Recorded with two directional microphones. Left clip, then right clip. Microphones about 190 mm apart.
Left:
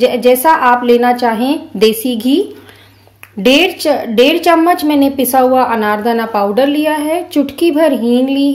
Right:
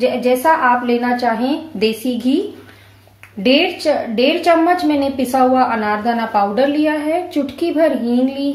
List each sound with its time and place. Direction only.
0.0 s a woman's voice: 55° left (ahead or behind)
3.4 s a woman's voice: 50° left (ahead or behind)